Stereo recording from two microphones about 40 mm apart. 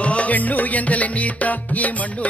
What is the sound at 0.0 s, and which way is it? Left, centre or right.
Music, left.